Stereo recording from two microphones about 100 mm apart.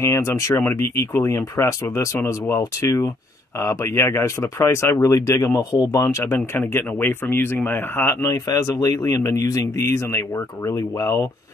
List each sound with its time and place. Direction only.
0.0 s speech: 30° left (ahead or behind)